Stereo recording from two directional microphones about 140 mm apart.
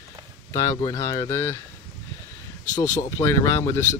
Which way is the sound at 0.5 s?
25° left (ahead or behind).